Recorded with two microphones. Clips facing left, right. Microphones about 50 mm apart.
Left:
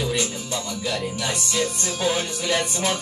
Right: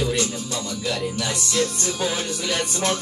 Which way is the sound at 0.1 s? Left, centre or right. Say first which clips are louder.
Right 1 dB; centre.